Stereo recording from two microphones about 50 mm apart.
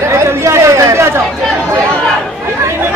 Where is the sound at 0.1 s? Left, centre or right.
Right.